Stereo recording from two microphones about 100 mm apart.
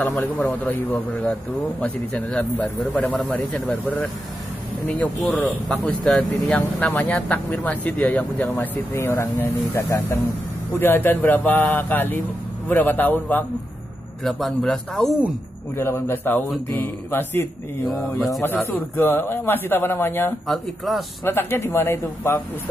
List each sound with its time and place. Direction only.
0.7 s speech: 20° left (ahead or behind)
4.8 s speech: 15° left (ahead or behind)
5.7 s speech: 5° left (ahead or behind)
14.2 s a man's voice: 5° left (ahead or behind)
15.7 s speech: 25° left (ahead or behind)
17.8 s a man's voice: centre (ahead or behind)
18.4 s speech: 20° left (ahead or behind)
20.4 s a man's voice: centre (ahead or behind)
21.2 s speech: 20° left (ahead or behind)